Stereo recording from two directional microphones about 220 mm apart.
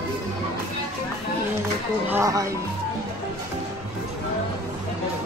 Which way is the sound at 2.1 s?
15° right (ahead or behind).